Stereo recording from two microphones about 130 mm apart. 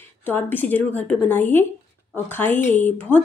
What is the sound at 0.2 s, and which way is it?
A woman's voice, 15° left (ahead or behind).